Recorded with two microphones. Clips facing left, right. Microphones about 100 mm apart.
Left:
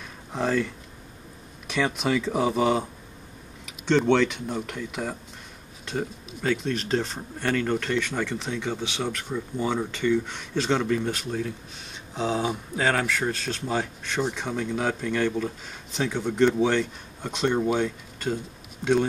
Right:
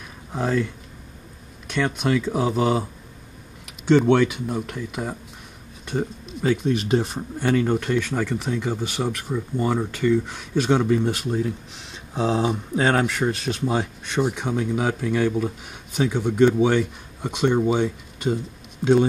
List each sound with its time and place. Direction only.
0.3 s speech: centre (ahead or behind)
5.9 s a sound: centre (ahead or behind)
6.7 s speech: 15° right (ahead or behind)